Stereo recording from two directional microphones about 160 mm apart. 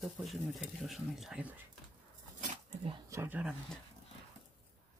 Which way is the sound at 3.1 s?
15° right (ahead or behind).